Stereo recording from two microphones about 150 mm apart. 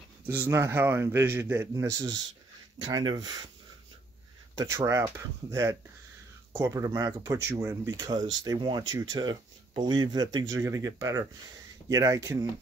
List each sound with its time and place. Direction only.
0.3 s a man's voice: 15° right (ahead or behind)
4.6 s speech: 25° right (ahead or behind)